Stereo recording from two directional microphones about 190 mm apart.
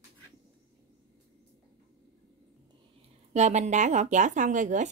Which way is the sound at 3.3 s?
35° right (ahead or behind).